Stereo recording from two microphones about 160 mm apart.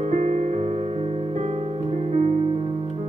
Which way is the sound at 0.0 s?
45° right (ahead or behind).